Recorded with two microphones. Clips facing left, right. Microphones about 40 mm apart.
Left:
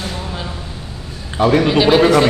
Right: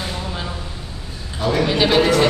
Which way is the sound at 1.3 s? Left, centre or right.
Left.